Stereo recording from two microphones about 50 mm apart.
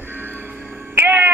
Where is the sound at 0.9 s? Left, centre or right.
Right.